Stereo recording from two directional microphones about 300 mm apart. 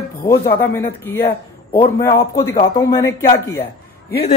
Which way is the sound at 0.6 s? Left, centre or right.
Centre.